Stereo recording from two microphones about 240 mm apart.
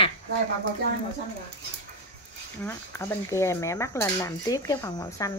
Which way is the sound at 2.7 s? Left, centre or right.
Centre.